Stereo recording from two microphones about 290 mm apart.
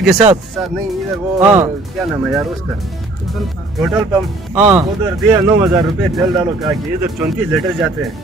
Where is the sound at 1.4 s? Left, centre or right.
Right.